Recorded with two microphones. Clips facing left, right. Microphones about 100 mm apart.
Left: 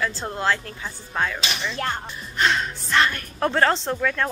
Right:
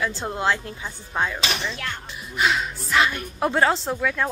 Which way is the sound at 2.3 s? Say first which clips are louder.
Even; 5° right (ahead or behind).